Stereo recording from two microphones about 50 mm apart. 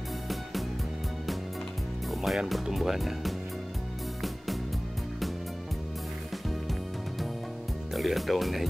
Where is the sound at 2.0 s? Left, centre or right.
Centre.